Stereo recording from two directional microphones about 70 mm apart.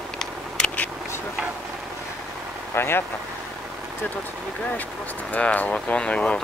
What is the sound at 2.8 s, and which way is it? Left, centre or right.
Speech, left.